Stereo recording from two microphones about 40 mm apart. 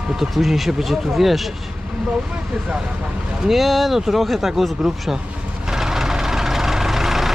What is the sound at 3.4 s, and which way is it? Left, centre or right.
Speech, centre.